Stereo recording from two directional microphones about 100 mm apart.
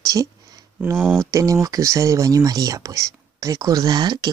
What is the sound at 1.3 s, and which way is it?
Speech, 35° right (ahead or behind).